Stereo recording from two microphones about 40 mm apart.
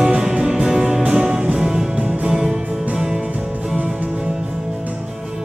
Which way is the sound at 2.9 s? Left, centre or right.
Centre.